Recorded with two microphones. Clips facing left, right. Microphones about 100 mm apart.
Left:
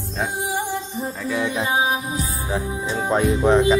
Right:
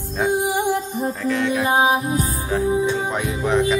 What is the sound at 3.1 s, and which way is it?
Speech, 30° left (ahead or behind).